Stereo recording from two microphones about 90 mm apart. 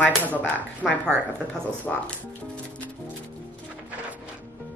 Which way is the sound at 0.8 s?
5° left (ahead or behind).